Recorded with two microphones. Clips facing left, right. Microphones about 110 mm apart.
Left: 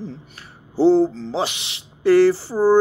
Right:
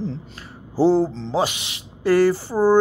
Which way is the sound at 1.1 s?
25° right (ahead or behind).